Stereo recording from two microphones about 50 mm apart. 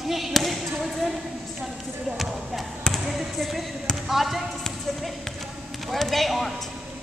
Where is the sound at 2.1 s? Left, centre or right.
Centre.